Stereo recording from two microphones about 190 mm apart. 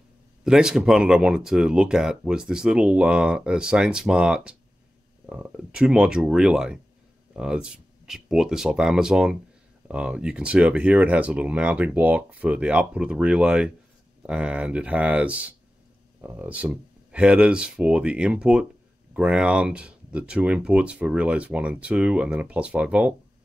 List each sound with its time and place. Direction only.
0.4 s speech: 5° right (ahead or behind)